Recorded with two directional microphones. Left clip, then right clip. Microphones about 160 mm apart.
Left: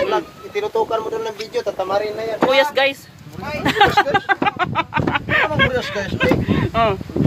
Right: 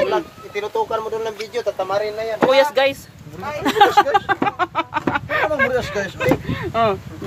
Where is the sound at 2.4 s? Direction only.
10° right (ahead or behind).